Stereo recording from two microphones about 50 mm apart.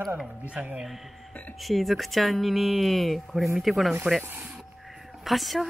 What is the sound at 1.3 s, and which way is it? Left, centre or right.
Speech, left.